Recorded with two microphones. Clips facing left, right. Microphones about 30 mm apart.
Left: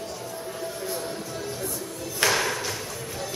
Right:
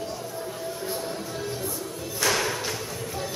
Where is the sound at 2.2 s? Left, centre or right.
Centre.